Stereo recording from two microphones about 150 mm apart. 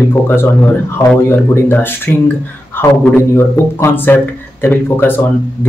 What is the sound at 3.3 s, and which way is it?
Speech, 15° left (ahead or behind).